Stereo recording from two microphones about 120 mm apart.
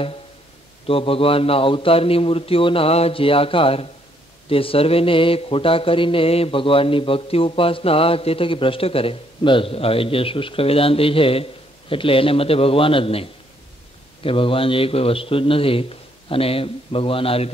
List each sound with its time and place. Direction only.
0.8 s speech: 50° left (ahead or behind)